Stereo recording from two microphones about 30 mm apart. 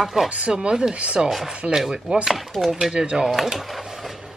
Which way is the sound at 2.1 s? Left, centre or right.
Right.